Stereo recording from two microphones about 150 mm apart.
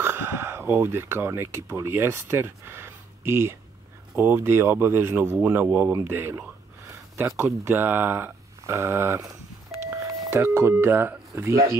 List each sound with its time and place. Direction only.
0.0 s speech: 15° right (ahead or behind)